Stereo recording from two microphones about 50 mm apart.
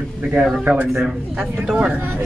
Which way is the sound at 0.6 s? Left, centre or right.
Right.